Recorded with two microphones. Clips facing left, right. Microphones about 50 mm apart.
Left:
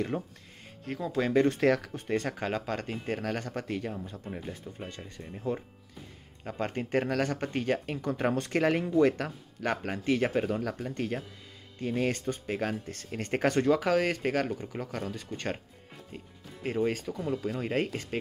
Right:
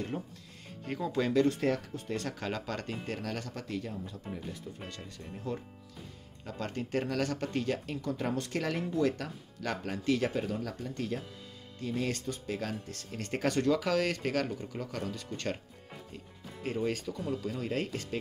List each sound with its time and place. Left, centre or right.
0.1 s speech: left
0.8 s speech: centre
1.3 s speech: left
1.6 s speech: left
2.1 s speech: left
3.2 s speech: left
4.8 s speech: left
5.2 s speech: centre
6.4 s speech: left
16.6 s speech: centre